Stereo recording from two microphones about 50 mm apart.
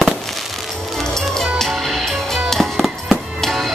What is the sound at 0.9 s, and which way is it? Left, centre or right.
Music, centre.